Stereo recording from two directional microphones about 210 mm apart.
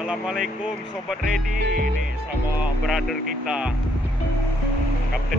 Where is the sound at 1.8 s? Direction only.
40° right (ahead or behind).